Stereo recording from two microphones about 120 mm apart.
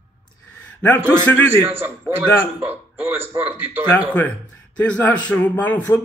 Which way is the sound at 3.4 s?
15° right (ahead or behind).